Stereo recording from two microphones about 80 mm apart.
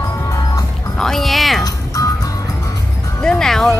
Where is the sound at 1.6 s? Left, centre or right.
Left.